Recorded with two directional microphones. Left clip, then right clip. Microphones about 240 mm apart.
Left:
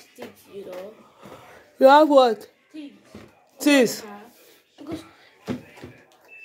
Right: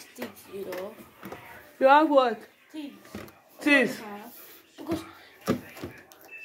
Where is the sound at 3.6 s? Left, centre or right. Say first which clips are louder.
Left 4 dB; left.